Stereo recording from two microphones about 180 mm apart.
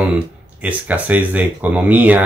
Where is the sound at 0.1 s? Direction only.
10° right (ahead or behind).